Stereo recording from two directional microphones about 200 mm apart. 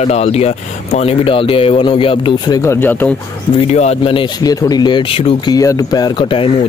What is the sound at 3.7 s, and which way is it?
Speech, 30° left (ahead or behind).